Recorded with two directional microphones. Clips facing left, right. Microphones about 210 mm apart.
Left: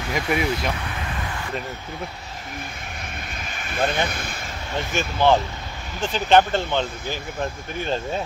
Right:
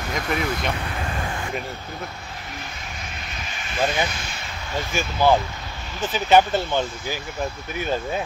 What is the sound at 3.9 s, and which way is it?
Speech, 60° left (ahead or behind).